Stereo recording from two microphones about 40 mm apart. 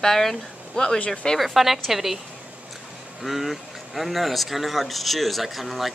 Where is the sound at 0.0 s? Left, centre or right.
Centre.